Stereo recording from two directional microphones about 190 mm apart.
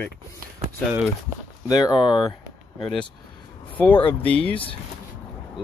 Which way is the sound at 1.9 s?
5° right (ahead or behind).